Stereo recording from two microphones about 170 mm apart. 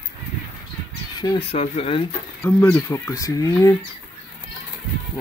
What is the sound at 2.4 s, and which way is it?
Speech, 20° left (ahead or behind).